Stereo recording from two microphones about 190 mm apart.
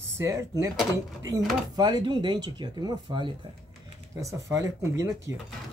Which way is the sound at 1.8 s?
20° right (ahead or behind).